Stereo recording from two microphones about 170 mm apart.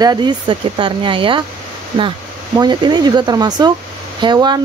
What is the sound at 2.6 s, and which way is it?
Speech, 25° right (ahead or behind).